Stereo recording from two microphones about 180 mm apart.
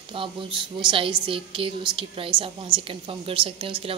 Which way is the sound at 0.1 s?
30° right (ahead or behind).